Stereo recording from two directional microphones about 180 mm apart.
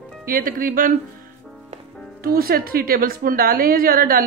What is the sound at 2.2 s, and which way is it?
A woman's voice, 55° right (ahead or behind).